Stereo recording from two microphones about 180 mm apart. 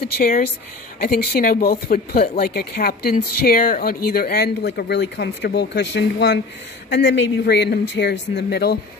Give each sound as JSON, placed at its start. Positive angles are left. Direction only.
{"t": 0.2, "sound": "speech", "side_deg": 55}